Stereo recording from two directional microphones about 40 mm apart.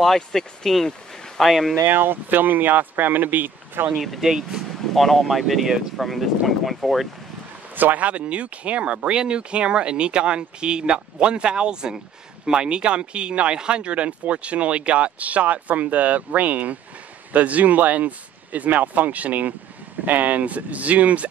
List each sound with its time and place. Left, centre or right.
0.0 s speech: centre
1.8 s speech: right
3.9 s speech: centre
4.9 s speech: centre
7.7 s speech: right